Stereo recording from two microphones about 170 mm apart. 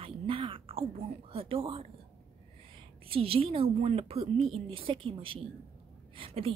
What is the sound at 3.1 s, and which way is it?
A woman's voice, 35° right (ahead or behind).